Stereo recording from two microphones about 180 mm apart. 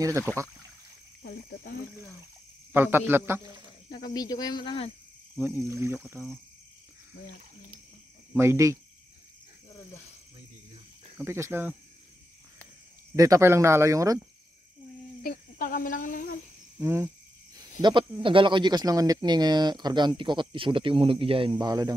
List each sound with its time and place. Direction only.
1.2 s speech: 60° left (ahead or behind)
2.7 s speech: 10° right (ahead or behind)
3.6 s speech: 20° left (ahead or behind)
5.4 s speech: 15° right (ahead or behind)
8.3 s speech: 15° right (ahead or behind)
11.1 s speech: 15° right (ahead or behind)
13.1 s speech: 15° right (ahead or behind)
15.2 s speech: 50° left (ahead or behind)
16.8 s speech: 15° right (ahead or behind)
17.8 s speech: 30° right (ahead or behind)